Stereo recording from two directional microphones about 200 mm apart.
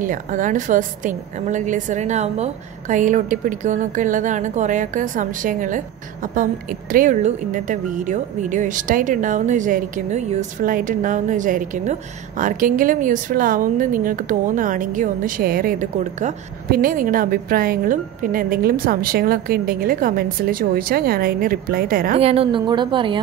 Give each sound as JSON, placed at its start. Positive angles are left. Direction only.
{"t": 0.0, "sound": "a woman's voice", "side_deg": -40}
{"t": 22.2, "sound": "a woman's voice", "side_deg": -30}